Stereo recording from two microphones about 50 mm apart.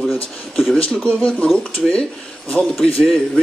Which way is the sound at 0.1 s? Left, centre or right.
Centre.